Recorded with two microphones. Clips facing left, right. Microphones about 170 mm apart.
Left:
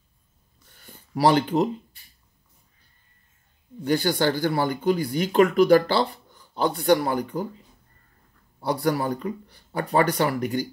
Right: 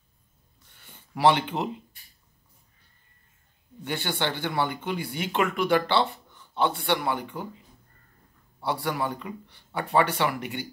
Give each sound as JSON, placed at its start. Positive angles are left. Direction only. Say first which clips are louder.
{"t": 0.7, "sound": "a sound", "louder": "left 7 dB", "side_deg": 40}
{"t": 3.8, "sound": "speech", "louder": "left 8 dB", "side_deg": 40}
{"t": 8.6, "sound": "speech", "louder": "left 5 dB", "side_deg": 40}